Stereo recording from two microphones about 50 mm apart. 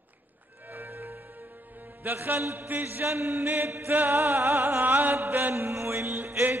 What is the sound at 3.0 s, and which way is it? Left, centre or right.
Chant, right.